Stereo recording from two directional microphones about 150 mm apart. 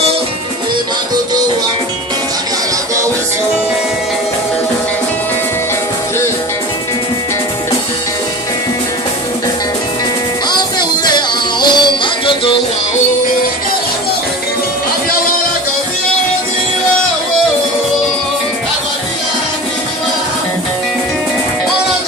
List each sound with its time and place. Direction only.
10.5 s music: 30° left (ahead or behind)